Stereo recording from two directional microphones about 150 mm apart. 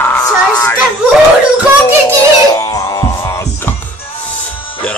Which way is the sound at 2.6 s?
25° left (ahead or behind).